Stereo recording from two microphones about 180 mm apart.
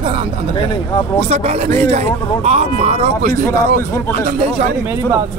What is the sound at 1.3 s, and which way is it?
Speech, 35° right (ahead or behind).